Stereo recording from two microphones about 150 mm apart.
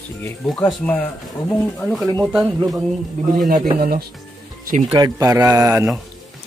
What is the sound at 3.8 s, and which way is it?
Speech, 70° right (ahead or behind).